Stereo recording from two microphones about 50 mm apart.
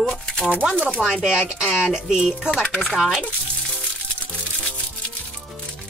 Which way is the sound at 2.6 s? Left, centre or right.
Left.